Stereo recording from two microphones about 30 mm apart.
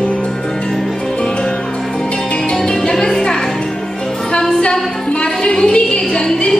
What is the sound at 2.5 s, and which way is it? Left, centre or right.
Music, left.